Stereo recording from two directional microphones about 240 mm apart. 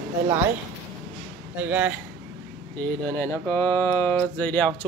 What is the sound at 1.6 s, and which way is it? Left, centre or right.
Speech, centre.